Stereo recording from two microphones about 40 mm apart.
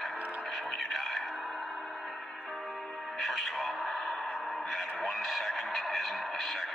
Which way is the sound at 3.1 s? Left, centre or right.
Centre.